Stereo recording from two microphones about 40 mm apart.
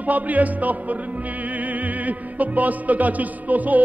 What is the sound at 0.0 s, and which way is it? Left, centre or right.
Music, right.